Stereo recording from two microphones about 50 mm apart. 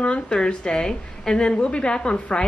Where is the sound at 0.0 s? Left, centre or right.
Centre.